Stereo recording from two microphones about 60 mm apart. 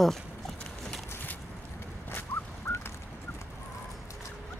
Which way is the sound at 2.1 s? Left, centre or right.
Left.